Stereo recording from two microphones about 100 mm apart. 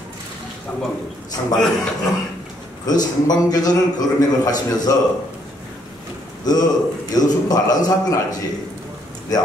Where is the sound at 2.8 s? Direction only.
40° left (ahead or behind).